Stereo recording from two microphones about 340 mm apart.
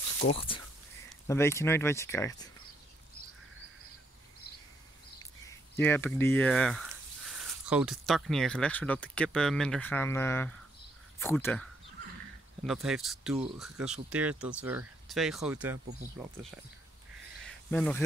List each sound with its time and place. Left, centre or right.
0.3 s speech: centre
5.2 s speech: centre
12.6 s speech: centre
17.5 s a sound: centre